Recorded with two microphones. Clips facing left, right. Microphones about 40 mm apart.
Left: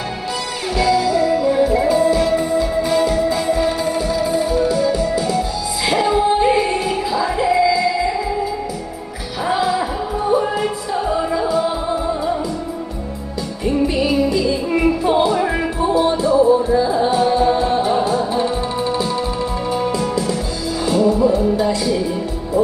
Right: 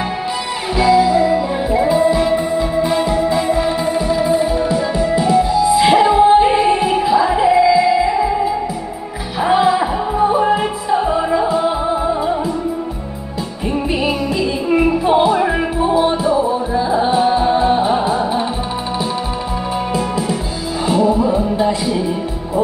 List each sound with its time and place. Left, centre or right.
0.7 s music: centre
13.7 s music: right
19.9 s music: right